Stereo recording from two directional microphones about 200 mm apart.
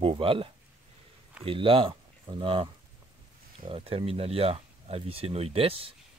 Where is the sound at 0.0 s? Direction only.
25° right (ahead or behind).